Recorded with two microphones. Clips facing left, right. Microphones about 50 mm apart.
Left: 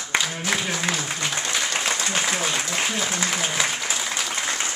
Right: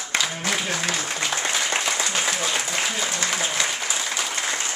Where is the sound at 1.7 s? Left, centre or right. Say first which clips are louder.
Right 1 dB; right.